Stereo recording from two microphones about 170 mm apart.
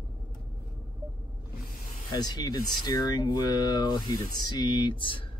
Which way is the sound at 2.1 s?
25° left (ahead or behind).